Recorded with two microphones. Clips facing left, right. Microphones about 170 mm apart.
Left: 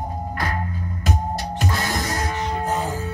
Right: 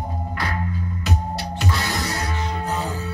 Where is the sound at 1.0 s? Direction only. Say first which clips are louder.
Left 3 dB; 45° left (ahead or behind).